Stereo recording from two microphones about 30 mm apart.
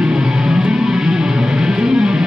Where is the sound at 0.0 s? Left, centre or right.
Right.